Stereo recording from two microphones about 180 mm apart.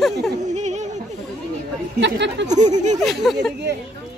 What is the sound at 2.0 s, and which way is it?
Speech, 75° right (ahead or behind).